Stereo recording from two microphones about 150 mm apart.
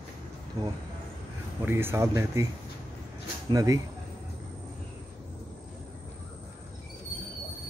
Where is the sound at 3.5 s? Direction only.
25° right (ahead or behind).